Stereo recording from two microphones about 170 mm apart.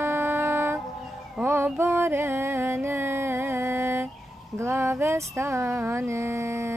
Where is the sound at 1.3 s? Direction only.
10° right (ahead or behind).